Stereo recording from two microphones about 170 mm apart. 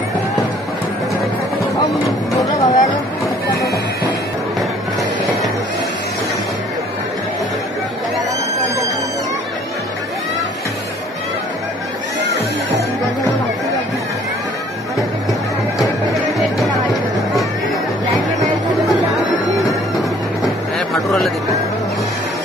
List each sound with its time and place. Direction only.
2.3 s music: 20° left (ahead or behind)
15.8 s music: centre (ahead or behind)
20.0 s vehicle: centre (ahead or behind)